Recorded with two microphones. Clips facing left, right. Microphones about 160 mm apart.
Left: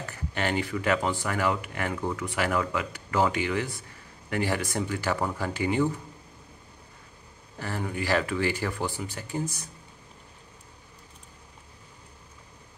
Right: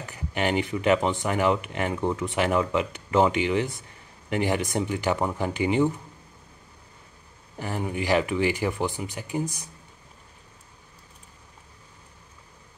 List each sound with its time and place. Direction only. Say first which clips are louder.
0.1 s speech: right 4 dB; 15° right (ahead or behind)
7.5 s speech: right 3 dB; 15° right (ahead or behind)